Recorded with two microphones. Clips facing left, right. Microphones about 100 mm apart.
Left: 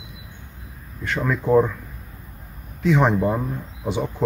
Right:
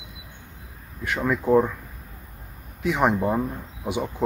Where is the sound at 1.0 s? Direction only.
10° right (ahead or behind).